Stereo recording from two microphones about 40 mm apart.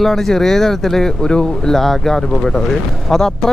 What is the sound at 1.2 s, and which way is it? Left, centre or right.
Speech, left.